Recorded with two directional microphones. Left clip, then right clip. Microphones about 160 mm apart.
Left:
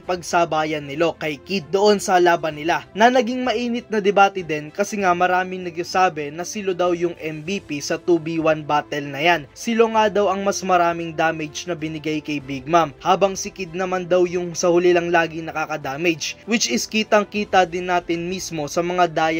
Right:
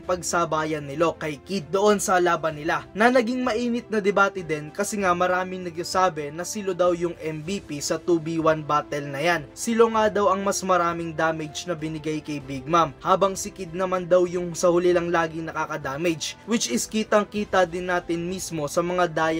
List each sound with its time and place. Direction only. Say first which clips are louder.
0.1 s speech: left 4 dB; 10° left (ahead or behind)